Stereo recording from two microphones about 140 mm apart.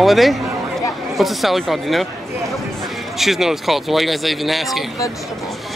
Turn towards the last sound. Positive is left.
turn(degrees=0)  # may be behind; listen again after turning